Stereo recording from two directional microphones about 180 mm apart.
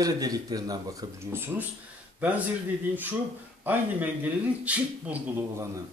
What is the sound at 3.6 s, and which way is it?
Speech, 10° right (ahead or behind).